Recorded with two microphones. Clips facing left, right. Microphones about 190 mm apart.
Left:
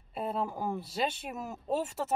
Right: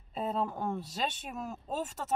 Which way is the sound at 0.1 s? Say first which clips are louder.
Even; 10° left (ahead or behind).